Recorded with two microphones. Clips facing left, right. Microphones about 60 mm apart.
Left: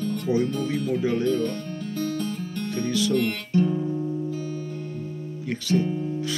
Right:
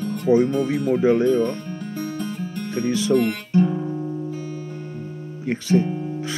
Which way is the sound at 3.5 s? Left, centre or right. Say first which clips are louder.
Right 2 dB; right.